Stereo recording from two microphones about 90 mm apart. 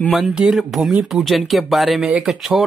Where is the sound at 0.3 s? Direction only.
5° right (ahead or behind).